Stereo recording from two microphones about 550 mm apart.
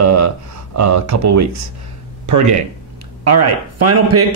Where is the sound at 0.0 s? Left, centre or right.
Right.